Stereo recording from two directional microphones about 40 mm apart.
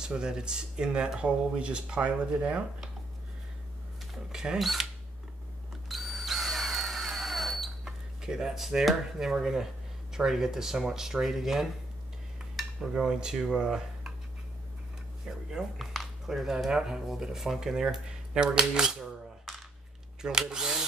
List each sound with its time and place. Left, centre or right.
0.0 s speech: centre
4.3 s speech: centre
4.6 s speech: centre
5.9 s drill: centre
7.8 s speech: centre
12.5 s speech: centre
15.3 s speech: right
15.8 s a sound: centre
16.3 s speech: centre
20.2 s speech: centre